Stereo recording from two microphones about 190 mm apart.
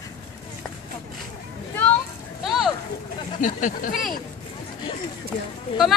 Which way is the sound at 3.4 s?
45° left (ahead or behind).